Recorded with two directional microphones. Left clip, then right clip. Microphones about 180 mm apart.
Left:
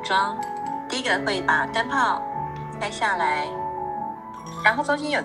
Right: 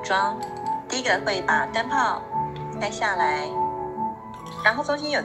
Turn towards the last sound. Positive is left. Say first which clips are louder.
# left 1 dB
turn(degrees=10)  # may be behind; listen again after turning